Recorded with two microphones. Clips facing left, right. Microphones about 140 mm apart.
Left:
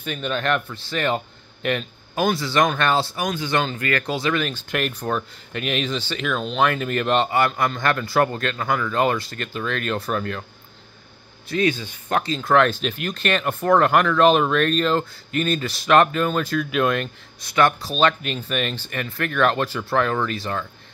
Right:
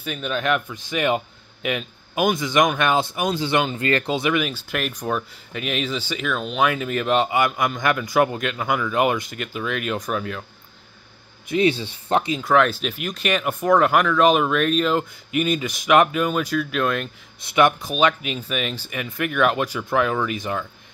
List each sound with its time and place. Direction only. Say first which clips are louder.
0.0 s a man's voice: even; 5° right (ahead or behind)
2.1 s speech: right 1 dB; 15° right (ahead or behind)
11.4 s speech: right 2 dB; 25° right (ahead or behind)
12.4 s speech: left 4 dB; 5° right (ahead or behind)
17.6 s speech: right 1 dB; 20° right (ahead or behind)
18.0 s speech: even; 5° right (ahead or behind)